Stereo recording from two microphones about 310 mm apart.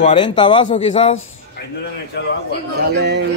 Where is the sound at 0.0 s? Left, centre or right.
Centre.